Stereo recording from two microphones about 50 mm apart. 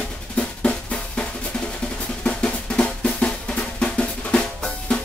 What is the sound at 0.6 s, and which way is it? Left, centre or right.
Drum, left.